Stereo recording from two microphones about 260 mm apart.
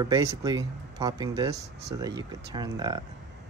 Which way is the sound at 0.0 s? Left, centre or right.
Centre.